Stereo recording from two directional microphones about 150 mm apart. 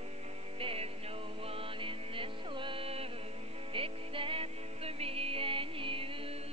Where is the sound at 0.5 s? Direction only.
40° right (ahead or behind).